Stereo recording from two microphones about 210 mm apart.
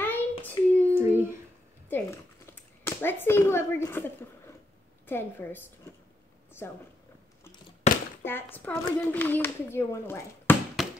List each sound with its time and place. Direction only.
0.0 s child singing: 10° left (ahead or behind)
1.9 s a child's voice: 10° left (ahead or behind)
6.6 s a woman's voice: 10° left (ahead or behind)
7.8 s a sound: 30° left (ahead or behind)
8.2 s a child's voice: 10° left (ahead or behind)